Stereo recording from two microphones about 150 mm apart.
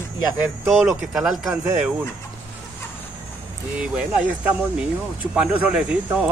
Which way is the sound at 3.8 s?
5° right (ahead or behind).